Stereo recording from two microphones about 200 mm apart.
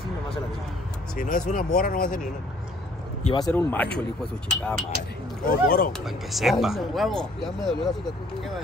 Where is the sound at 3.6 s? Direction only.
10° left (ahead or behind).